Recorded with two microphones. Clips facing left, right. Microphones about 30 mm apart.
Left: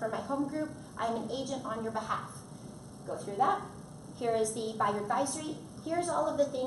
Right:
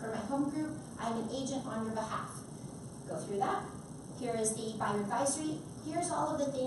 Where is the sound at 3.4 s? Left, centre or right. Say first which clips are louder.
Left 8 dB; left.